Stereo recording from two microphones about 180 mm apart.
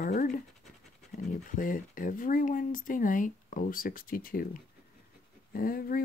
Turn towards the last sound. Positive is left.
turn(degrees=50)  # may be behind; listen again after turning